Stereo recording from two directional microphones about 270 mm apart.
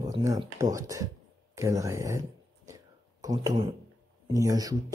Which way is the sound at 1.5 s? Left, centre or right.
Centre.